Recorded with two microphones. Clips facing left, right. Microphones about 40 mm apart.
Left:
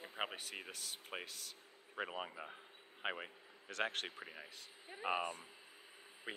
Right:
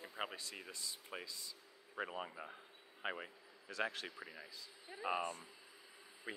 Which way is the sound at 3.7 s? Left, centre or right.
Left.